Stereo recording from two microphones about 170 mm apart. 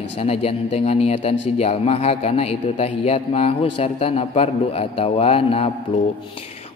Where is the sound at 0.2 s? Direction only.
35° left (ahead or behind).